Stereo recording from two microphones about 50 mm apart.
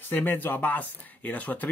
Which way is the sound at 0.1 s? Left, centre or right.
Left.